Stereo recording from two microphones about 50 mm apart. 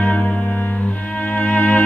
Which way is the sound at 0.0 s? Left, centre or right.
Left.